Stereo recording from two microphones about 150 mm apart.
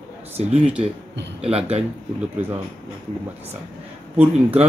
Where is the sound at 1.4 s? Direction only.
40° right (ahead or behind).